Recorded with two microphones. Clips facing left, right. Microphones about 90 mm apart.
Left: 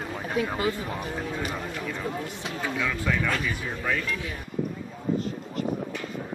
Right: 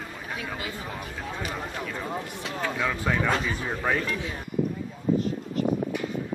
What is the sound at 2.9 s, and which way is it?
Speech, 25° right (ahead or behind).